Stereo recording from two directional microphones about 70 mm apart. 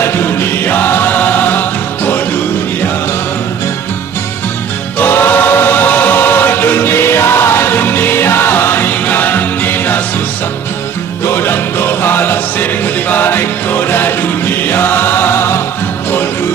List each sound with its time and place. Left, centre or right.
0.0 s chant: left
4.9 s choir: left
11.2 s music: left